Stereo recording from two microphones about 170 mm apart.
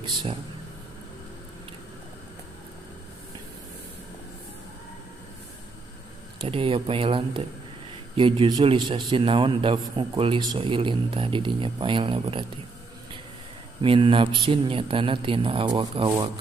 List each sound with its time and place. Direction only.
0.0 s speech: 30° right (ahead or behind)
6.4 s a man's voice: 30° right (ahead or behind)
13.8 s a man's voice: 30° right (ahead or behind)